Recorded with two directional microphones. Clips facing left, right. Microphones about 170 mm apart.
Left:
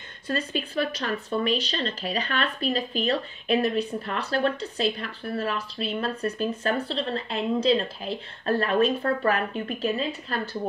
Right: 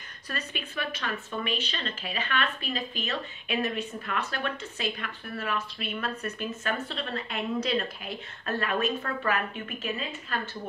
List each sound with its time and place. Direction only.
0.3 s speech: 30° left (ahead or behind)